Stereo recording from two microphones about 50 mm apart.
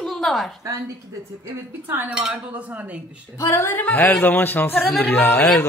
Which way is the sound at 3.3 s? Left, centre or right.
Left.